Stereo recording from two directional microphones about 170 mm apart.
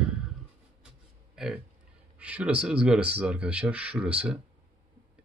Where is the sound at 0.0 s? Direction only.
5° right (ahead or behind).